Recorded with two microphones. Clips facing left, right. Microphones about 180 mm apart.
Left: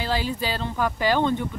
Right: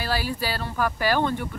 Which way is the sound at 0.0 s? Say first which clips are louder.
Left 1 dB; 20° left (ahead or behind).